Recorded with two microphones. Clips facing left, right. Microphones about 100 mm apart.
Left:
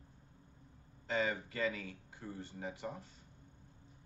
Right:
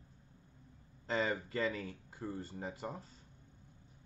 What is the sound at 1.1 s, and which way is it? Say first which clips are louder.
Speech: right 1 dB; 35° right (ahead or behind).